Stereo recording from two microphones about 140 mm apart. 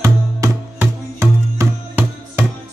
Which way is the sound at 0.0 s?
20° right (ahead or behind).